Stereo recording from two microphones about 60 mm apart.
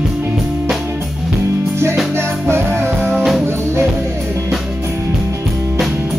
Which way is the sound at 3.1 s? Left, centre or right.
Centre.